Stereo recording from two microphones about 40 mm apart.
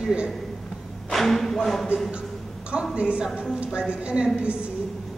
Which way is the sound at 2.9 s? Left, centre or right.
Right.